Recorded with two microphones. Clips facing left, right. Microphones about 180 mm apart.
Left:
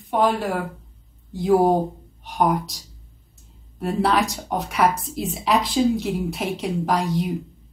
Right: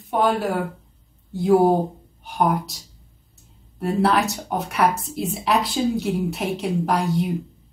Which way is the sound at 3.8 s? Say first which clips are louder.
Right 1 dB; centre (ahead or behind).